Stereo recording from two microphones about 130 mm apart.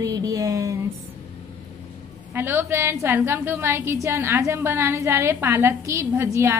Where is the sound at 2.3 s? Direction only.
15° right (ahead or behind).